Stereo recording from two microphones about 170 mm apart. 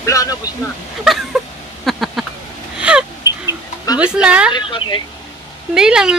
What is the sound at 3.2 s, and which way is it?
Fowl, 20° left (ahead or behind).